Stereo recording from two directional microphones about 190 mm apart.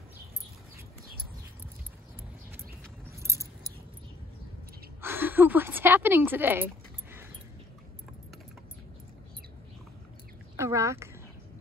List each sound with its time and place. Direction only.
3.2 s keys jangling: 15° right (ahead or behind)
5.0 s a sound: 10° right (ahead or behind)
10.5 s speech: 15° right (ahead or behind)